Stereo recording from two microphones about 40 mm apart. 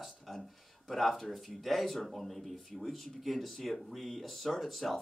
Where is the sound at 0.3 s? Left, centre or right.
Centre.